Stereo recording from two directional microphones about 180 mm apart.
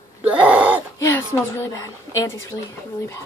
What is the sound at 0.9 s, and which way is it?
Speech, 15° left (ahead or behind).